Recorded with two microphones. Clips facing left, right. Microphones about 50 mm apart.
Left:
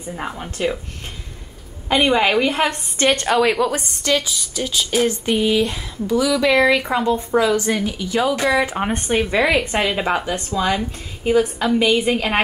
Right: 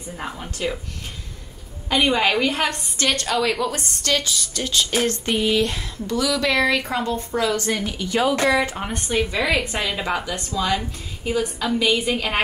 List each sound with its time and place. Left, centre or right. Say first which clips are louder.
0.1 s a woman's voice: left 3 dB; centre
2.0 s a woman's voice: left 3 dB; centre
8.7 s a woman's voice: left 4 dB; left